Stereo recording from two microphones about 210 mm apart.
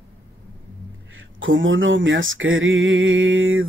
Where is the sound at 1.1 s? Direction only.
65° right (ahead or behind).